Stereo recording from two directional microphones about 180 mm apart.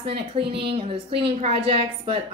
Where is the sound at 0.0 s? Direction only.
30° right (ahead or behind).